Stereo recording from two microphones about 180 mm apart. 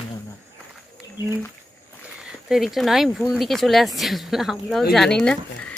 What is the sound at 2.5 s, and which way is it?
Speech, centre (ahead or behind).